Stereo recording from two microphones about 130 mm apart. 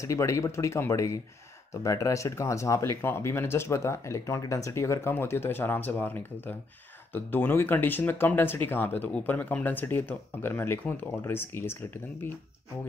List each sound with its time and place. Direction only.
0.0 s speech: 25° left (ahead or behind)